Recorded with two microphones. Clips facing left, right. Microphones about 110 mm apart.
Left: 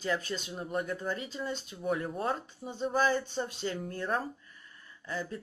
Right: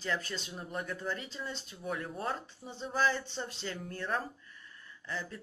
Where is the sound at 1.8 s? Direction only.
40° left (ahead or behind).